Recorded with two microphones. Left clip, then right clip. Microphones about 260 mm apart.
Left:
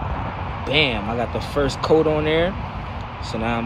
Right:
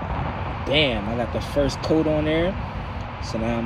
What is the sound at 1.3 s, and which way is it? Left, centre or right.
Speech, left.